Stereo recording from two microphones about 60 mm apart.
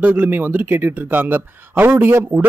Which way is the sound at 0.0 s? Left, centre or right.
Right.